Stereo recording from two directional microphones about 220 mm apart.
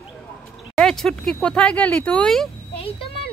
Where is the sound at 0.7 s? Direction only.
Centre (ahead or behind).